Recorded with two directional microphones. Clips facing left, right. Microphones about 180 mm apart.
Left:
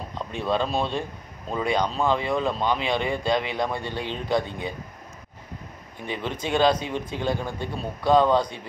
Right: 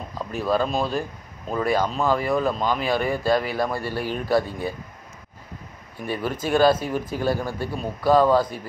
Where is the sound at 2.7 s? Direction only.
20° left (ahead or behind).